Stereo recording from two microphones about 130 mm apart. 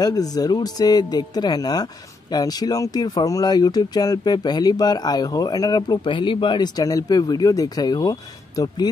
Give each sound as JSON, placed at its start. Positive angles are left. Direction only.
{"t": 0.0, "sound": "speech", "side_deg": 30}